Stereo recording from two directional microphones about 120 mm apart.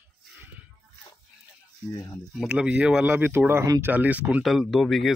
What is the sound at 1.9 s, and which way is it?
Speech, 25° left (ahead or behind).